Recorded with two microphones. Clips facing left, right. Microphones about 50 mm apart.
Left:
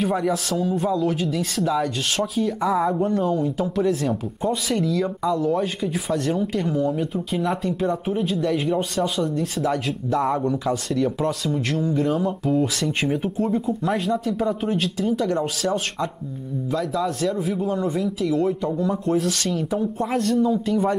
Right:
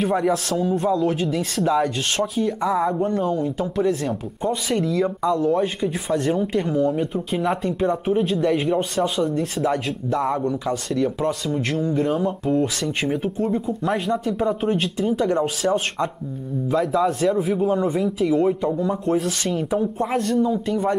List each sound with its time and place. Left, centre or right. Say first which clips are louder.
0.0 s a man's voice: right 2 dB; centre